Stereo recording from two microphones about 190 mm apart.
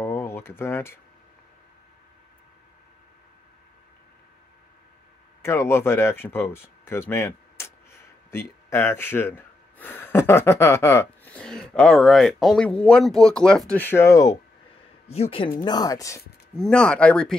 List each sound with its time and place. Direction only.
0.0 s a sound: 15° left (ahead or behind)
5.4 s speech: 15° left (ahead or behind)
15.1 s speech: 30° left (ahead or behind)
16.5 s speech: 5° left (ahead or behind)